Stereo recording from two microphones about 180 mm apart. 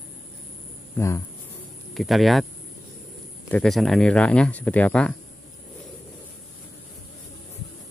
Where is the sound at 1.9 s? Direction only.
Centre (ahead or behind).